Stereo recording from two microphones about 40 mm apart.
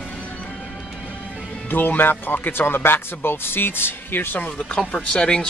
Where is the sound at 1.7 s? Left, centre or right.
Left.